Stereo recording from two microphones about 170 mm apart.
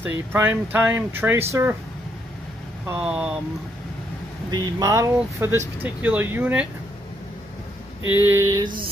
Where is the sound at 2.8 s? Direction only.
10° right (ahead or behind).